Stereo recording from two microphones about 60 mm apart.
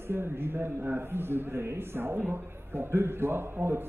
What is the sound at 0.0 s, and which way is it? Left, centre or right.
A man's voice, right.